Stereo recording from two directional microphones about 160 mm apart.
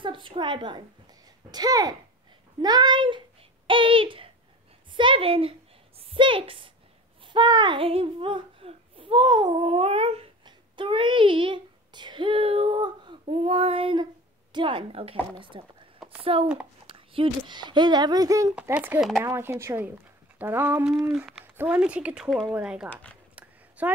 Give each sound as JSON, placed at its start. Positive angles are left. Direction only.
{"t": 0.0, "sound": "a woman's voice", "side_deg": -30}
{"t": 7.3, "sound": "a sound", "side_deg": -30}
{"t": 14.5, "sound": "a woman's voice", "side_deg": -30}
{"t": 18.5, "sound": "speech", "side_deg": -10}
{"t": 21.1, "sound": "a woman's voice", "side_deg": -5}